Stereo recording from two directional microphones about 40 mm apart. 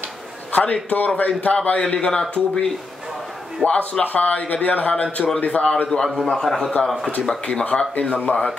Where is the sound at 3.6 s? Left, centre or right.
Left.